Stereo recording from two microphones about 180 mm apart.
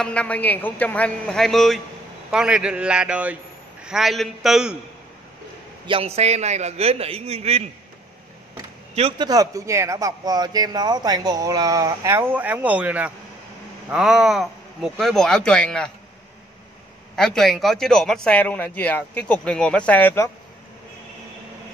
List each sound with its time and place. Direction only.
0.0 s a man's voice: 5° left (ahead or behind)
5.9 s a man's voice: 35° right (ahead or behind)
8.9 s a man's voice: 35° right (ahead or behind)
9.3 s a man's voice: 20° right (ahead or behind); by 15.9 s 5° left (ahead or behind)
17.1 s a man's voice: 5° left (ahead or behind)